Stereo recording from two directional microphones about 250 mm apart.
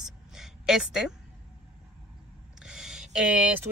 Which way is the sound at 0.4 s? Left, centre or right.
Centre.